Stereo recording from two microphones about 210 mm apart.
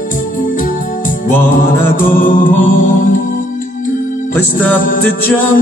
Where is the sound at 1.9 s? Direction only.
40° left (ahead or behind).